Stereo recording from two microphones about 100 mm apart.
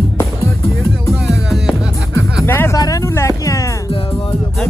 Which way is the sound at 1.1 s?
Centre (ahead or behind).